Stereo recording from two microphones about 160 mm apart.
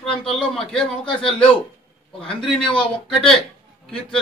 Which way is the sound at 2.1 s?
35° left (ahead or behind).